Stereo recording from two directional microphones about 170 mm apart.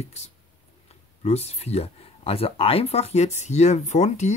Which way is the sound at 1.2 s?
40° left (ahead or behind).